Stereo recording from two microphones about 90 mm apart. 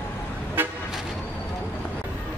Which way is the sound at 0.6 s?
25° right (ahead or behind).